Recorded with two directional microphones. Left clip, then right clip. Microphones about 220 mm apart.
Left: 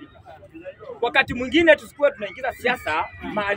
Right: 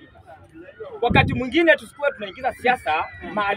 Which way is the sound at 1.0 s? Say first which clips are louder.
Right 1 dB; 5° right (ahead or behind).